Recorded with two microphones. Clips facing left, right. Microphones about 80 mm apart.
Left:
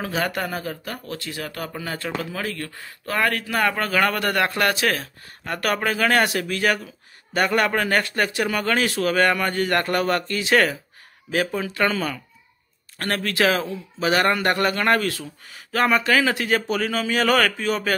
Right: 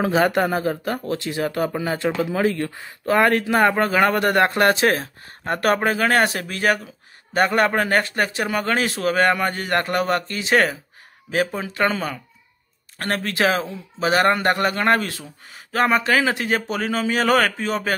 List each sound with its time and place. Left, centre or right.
0.0 s speech: right